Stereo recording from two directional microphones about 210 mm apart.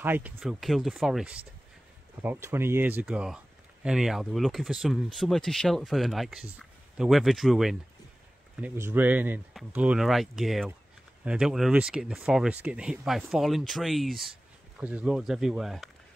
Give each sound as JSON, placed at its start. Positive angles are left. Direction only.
{"t": 0.0, "sound": "speech", "side_deg": -10}